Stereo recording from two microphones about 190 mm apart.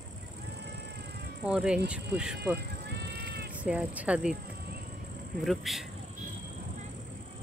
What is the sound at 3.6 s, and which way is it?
Speech, 5° right (ahead or behind).